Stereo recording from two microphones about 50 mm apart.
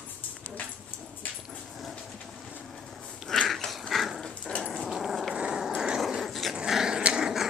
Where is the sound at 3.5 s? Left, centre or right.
Centre.